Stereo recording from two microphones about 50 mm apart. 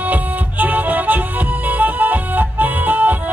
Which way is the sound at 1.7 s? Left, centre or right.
Right.